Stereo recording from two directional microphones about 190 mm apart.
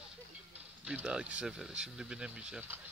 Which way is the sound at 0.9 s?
5° right (ahead or behind).